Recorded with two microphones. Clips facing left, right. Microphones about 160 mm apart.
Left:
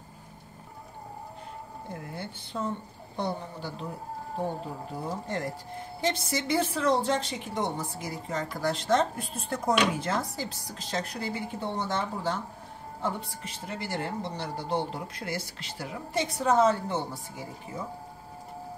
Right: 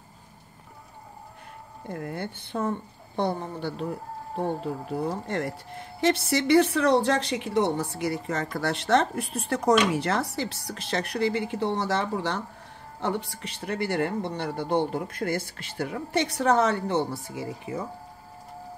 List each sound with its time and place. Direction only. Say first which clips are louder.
2.0 s speech: right 9 dB; 55° right (ahead or behind)
5.9 s a woman's voice: right 6 dB; 70° right (ahead or behind)